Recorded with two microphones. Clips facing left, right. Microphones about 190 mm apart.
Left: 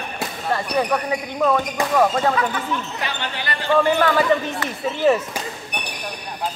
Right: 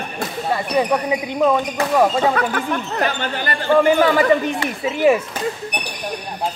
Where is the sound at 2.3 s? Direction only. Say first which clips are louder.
Right 2 dB; 60° right (ahead or behind).